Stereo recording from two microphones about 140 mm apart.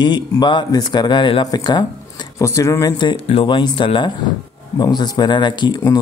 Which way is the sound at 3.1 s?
40° left (ahead or behind).